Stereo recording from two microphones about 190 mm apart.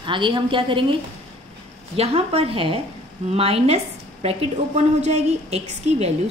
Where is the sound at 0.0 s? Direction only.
25° right (ahead or behind).